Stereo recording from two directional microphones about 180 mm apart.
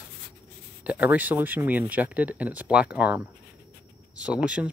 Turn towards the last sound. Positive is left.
turn(degrees=-5)  # may be behind; listen again after turning